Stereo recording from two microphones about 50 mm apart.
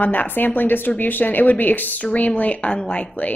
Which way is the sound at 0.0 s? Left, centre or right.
Left.